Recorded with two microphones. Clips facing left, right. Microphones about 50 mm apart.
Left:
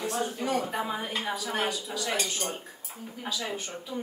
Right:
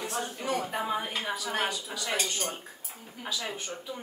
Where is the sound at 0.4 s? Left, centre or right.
Centre.